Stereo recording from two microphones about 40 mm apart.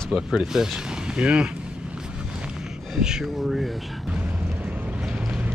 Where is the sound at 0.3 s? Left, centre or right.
Centre.